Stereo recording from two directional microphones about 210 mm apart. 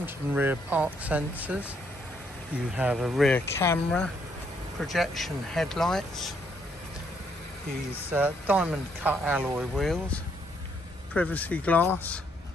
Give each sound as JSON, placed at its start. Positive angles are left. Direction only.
{"t": 0.0, "sound": "speech", "side_deg": -10}
{"t": 8.1, "sound": "speech", "side_deg": -10}